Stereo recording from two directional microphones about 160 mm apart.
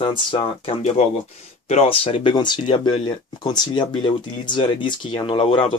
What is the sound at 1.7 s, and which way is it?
Speech, 40° left (ahead or behind).